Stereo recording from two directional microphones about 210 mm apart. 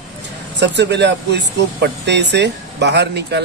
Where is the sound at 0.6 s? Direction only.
55° right (ahead or behind).